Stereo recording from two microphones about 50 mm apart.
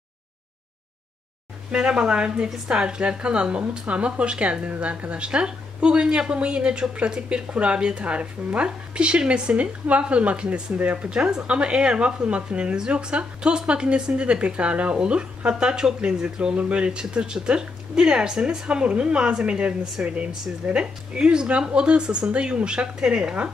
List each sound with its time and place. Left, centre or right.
1.7 s speech: centre